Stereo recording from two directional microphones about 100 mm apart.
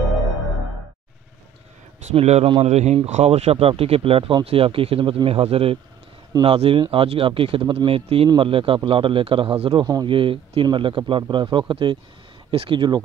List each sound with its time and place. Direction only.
2.1 s speech: 80° right
2.6 s speech: 90° right; by 13.0 s 55° right (ahead or behind)